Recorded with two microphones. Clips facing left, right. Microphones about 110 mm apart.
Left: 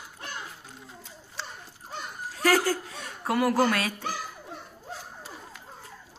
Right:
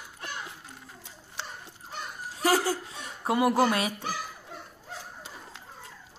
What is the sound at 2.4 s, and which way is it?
Speech, 20° right (ahead or behind).